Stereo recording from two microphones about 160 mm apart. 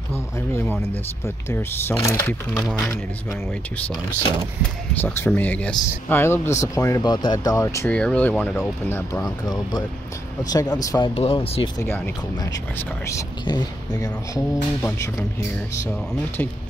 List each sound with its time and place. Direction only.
0.1 s speech: 15° left (ahead or behind)
5.0 s speech: 15° left (ahead or behind)
7.9 s speech: 5° left (ahead or behind); by 11.1 s 25° left (ahead or behind)
11.1 s speech: 40° left (ahead or behind)
13.1 s speech: 25° left (ahead or behind)